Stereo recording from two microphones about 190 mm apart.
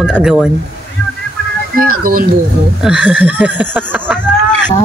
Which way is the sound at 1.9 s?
50° right (ahead or behind).